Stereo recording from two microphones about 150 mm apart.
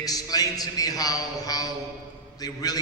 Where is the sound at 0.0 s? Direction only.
25° left (ahead or behind).